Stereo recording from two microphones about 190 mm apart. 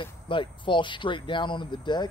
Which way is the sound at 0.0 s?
25° left (ahead or behind).